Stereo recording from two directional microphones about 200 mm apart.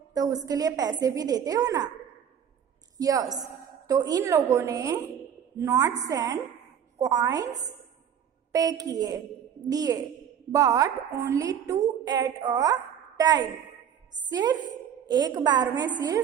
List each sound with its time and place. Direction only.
0.1 s a woman's voice: 20° right (ahead or behind)
3.0 s a woman's voice: 20° right (ahead or behind)